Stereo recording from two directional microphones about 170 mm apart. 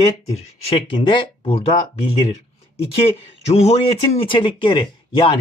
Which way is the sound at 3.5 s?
35° left (ahead or behind).